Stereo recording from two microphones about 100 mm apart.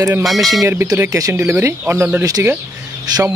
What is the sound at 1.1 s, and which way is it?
Speech, 35° right (ahead or behind).